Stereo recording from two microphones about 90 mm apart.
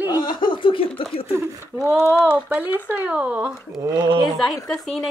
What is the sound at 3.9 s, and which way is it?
Speech, 55° right (ahead or behind).